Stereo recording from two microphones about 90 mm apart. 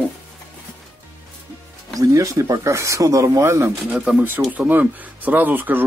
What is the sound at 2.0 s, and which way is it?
Speech, 40° right (ahead or behind).